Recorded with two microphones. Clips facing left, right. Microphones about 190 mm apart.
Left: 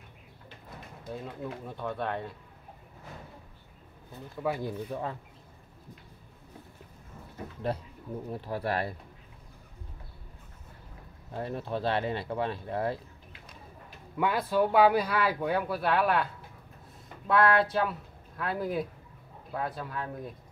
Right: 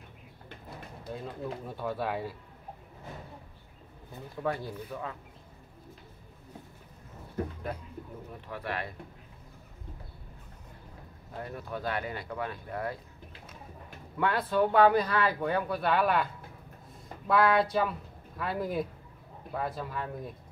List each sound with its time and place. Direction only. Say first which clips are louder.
1.1 s speech: even; centre (ahead or behind)
4.4 s speech: left 1 dB; 5° left (ahead or behind)
4.9 s speech: left 2 dB; 30° left (ahead or behind)
8.3 s speech: left 6 dB; 35° left (ahead or behind)
11.3 s speech: left 5 dB; 25° left (ahead or behind)
14.1 s speech: left 1 dB; 10° left (ahead or behind)
17.3 s speech: even; centre (ahead or behind)